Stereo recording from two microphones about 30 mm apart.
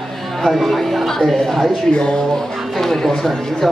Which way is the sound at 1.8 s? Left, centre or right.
Left.